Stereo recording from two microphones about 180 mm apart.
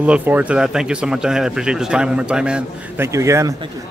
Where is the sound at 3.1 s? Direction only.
15° right (ahead or behind).